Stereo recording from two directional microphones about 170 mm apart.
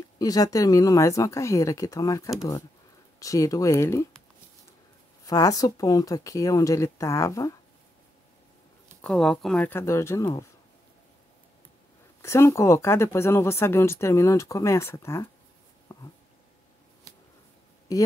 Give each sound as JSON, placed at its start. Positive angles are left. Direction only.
{"t": 0.2, "sound": "speech", "side_deg": 20}
{"t": 5.2, "sound": "speech", "side_deg": 20}
{"t": 9.0, "sound": "speech", "side_deg": 5}
{"t": 12.2, "sound": "speech", "side_deg": 15}
{"t": 15.9, "sound": "a sound", "side_deg": 20}